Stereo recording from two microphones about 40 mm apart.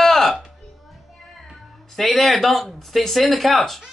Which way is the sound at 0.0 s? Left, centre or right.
Centre.